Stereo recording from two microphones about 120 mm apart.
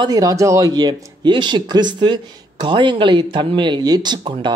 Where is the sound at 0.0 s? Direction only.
30° right (ahead or behind).